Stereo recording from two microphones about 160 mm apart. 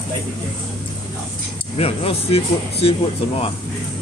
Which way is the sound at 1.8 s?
40° left (ahead or behind).